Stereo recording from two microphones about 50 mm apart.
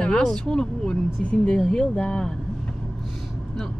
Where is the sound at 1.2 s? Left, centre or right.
Left.